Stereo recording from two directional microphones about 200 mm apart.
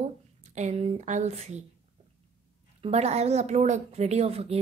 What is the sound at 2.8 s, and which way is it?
Speech, 30° right (ahead or behind).